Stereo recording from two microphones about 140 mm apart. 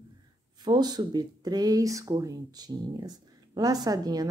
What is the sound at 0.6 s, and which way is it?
Speech, 30° right (ahead or behind).